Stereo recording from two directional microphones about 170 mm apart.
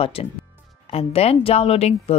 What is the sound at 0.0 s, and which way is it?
Speech, 35° left (ahead or behind).